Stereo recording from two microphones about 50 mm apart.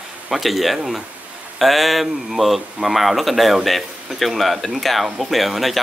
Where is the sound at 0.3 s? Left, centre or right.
Centre.